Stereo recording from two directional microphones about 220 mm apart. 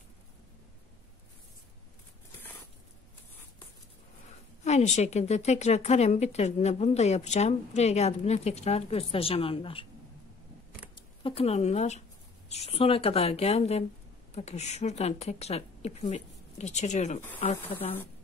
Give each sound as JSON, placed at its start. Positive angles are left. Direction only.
{"t": 4.6, "sound": "a woman's voice", "side_deg": 30}
{"t": 11.2, "sound": "a woman's voice", "side_deg": 25}